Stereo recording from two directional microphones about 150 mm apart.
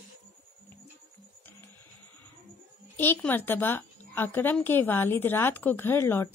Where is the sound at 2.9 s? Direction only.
15° left (ahead or behind).